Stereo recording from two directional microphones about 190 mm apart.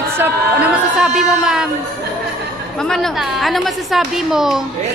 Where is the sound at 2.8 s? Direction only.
Centre (ahead or behind).